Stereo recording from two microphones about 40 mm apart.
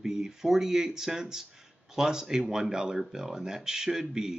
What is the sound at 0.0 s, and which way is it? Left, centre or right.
Speech, centre.